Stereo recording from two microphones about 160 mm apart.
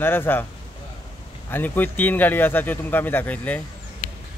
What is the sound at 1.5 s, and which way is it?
Speech, 10° left (ahead or behind).